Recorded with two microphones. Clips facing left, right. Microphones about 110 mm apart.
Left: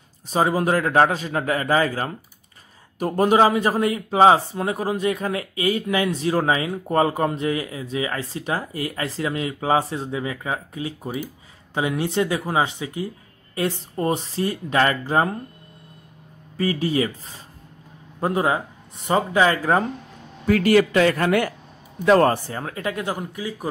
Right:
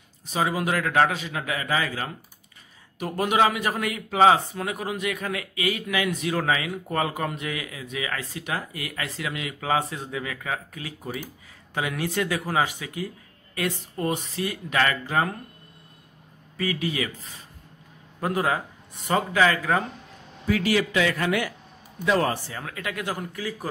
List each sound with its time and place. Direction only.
0.3 s a man's voice: 40° left (ahead or behind)
16.5 s a man's voice: 35° left (ahead or behind)
18.2 s speech: 30° left (ahead or behind)
20.4 s a man's voice: 55° left (ahead or behind); by 23.7 s 20° left (ahead or behind)